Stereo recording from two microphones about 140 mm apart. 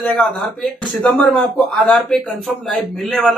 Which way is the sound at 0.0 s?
5° left (ahead or behind).